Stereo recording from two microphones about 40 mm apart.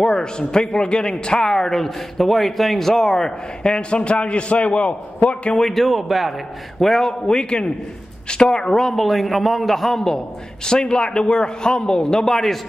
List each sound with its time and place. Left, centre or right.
0.0 s a man's voice: centre
5.6 s a man's voice: centre
6.8 s a man's voice: centre